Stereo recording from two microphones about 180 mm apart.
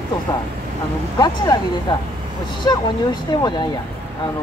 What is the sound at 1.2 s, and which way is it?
Speech, 20° left (ahead or behind).